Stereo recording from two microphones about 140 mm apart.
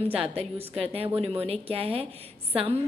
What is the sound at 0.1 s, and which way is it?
A woman's voice, 45° right (ahead or behind).